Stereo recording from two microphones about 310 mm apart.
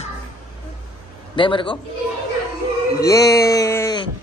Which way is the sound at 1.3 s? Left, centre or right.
Centre.